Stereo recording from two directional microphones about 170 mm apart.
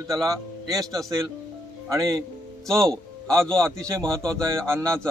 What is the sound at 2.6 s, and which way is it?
A man's voice, 5° left (ahead or behind).